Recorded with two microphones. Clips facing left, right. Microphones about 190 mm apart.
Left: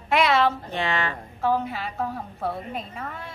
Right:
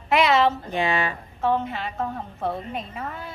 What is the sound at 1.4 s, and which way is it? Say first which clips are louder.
A woman's voice: right 1 dB; centre (ahead or behind).